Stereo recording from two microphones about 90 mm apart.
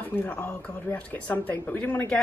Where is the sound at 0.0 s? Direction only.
20° left (ahead or behind).